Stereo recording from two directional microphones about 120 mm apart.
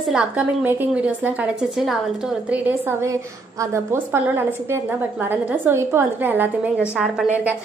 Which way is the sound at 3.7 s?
20° right (ahead or behind).